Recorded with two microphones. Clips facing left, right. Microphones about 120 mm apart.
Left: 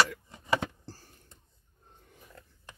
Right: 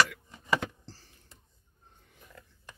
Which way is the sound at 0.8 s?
50° left (ahead or behind).